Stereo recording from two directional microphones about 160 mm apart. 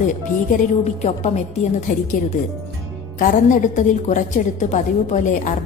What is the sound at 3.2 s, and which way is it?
A woman's voice, 60° left (ahead or behind).